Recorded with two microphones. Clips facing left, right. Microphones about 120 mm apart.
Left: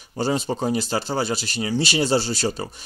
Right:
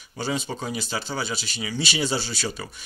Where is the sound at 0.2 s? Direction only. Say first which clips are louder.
Left 6 dB; 40° left (ahead or behind).